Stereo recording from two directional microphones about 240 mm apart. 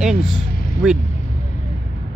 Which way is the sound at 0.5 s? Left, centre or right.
Left.